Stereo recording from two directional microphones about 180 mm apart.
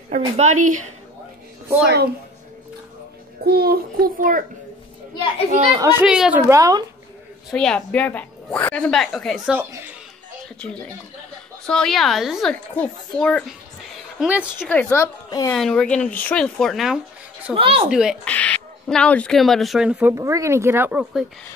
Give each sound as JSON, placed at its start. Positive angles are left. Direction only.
{"t": 0.1, "sound": "a woman's voice", "side_deg": -40}
{"t": 3.4, "sound": "a child's voice", "side_deg": -60}
{"t": 5.7, "sound": "a woman's voice", "side_deg": -15}
{"t": 6.5, "sound": "speech", "side_deg": -20}
{"t": 7.5, "sound": "speech", "side_deg": 5}
{"t": 9.6, "sound": "speech", "side_deg": -10}
{"t": 10.6, "sound": "a woman's voice", "side_deg": 5}
{"t": 14.7, "sound": "a woman's voice", "side_deg": 10}
{"t": 15.5, "sound": "speech", "side_deg": 5}
{"t": 17.6, "sound": "a woman's voice", "side_deg": -30}
{"t": 17.8, "sound": "speech", "side_deg": -5}
{"t": 18.3, "sound": "speech", "side_deg": 10}